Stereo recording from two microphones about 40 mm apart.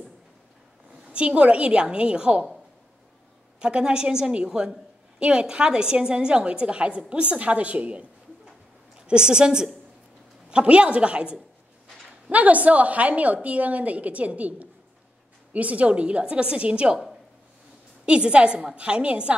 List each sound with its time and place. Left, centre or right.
1.0 s a woman's voice: right
3.5 s a woman's voice: right
12.3 s a woman's voice: right
18.0 s a woman's voice: right